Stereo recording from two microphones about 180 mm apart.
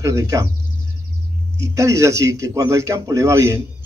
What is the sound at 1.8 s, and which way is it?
A man's voice, 15° right (ahead or behind).